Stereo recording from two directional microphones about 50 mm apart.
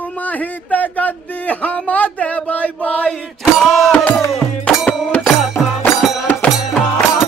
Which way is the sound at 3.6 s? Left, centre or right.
Centre.